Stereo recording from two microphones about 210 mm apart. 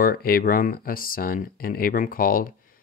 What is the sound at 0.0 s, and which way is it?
Speech, 45° left (ahead or behind).